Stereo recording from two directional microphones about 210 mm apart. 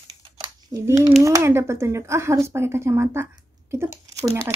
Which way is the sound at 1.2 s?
15° right (ahead or behind).